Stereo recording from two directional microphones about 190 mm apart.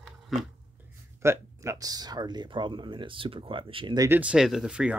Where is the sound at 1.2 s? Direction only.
15° right (ahead or behind).